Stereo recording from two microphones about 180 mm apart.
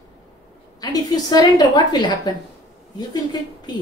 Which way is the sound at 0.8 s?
20° left (ahead or behind).